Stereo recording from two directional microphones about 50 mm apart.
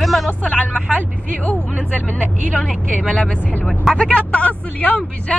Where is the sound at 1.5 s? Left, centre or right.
Left.